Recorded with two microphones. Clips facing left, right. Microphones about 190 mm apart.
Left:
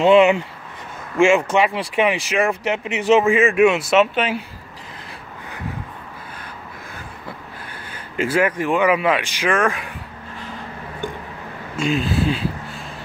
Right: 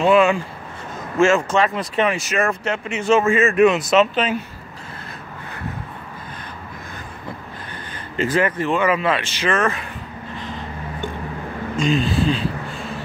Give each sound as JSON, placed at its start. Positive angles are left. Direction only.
{"t": 0.0, "sound": "speech", "side_deg": 20}
{"t": 7.7, "sound": "speech", "side_deg": 10}
{"t": 11.7, "sound": "speech", "side_deg": 5}